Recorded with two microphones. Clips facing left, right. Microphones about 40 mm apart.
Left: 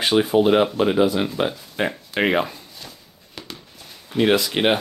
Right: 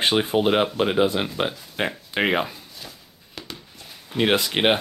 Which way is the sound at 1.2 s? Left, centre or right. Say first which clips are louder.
Left 3 dB; centre.